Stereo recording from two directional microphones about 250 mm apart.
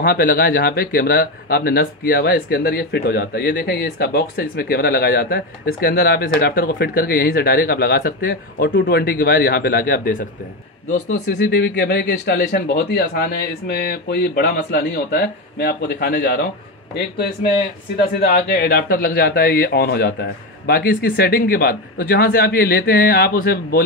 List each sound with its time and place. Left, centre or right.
0.0 s speech: left
11.3 s speech: left